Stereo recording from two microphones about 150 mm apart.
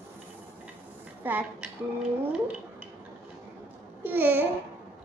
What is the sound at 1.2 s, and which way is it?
Speech, 10° right (ahead or behind).